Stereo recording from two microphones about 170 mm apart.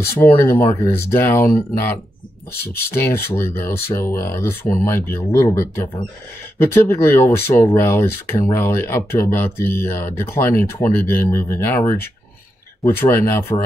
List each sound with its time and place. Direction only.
0.0 s speech: 15° left (ahead or behind)
2.9 s speech: 15° left (ahead or behind)